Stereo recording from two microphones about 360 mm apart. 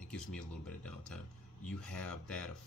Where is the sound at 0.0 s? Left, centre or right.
Centre.